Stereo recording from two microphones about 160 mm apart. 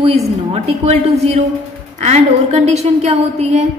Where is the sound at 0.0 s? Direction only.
40° right (ahead or behind).